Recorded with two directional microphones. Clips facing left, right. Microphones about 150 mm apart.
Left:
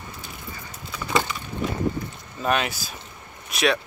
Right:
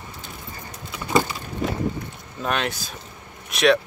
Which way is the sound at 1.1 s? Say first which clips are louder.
Right 3 dB; 35° right (ahead or behind).